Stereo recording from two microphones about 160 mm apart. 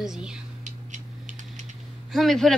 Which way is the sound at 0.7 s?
50° right (ahead or behind).